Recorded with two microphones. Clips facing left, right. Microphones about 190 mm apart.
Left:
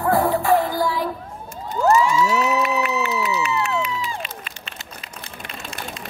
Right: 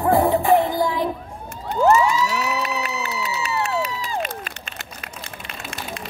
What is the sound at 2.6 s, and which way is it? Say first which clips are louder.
Crowd: left 5 dB; 35° right (ahead or behind).